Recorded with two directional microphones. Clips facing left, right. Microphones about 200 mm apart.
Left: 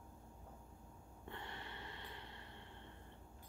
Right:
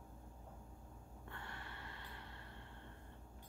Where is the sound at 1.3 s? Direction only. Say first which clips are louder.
Left 3 dB; 20° left (ahead or behind).